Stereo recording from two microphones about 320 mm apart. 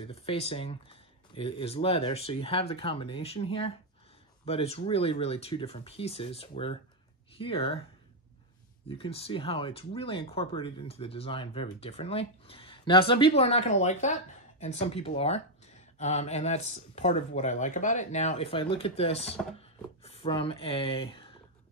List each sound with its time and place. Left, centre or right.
0.1 s speech: centre
8.8 s speech: centre